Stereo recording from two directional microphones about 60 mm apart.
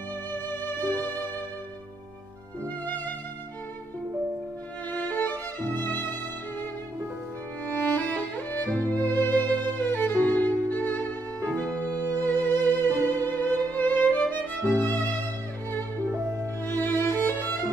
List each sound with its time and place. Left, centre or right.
0.3 s music: left
4.9 s violin: left
7.6 s music: left
9.8 s violin: left
11.9 s music: right
13.7 s music: left
16.6 s music: left